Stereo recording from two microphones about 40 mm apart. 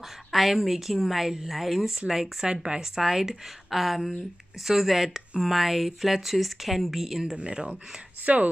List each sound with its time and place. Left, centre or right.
0.3 s a woman's voice: centre
2.4 s speech: right
2.8 s a woman's voice: centre
7.3 s speech: right
8.3 s speech: right